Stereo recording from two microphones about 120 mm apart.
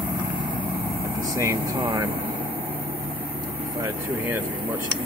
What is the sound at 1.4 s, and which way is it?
Speech, 25° right (ahead or behind).